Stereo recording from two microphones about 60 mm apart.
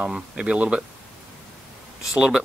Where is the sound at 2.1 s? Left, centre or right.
Centre.